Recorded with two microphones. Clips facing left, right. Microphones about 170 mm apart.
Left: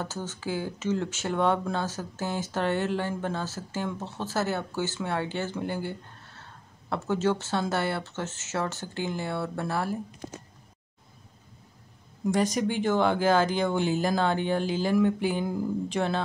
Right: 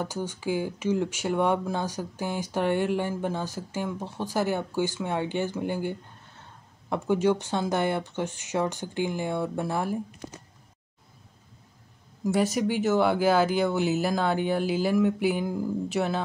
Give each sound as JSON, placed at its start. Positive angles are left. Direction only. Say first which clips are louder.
{"t": 0.0, "sound": "speech", "louder": "right 3 dB", "side_deg": -15}
{"t": 12.2, "sound": "speech", "louder": "right 1 dB", "side_deg": -10}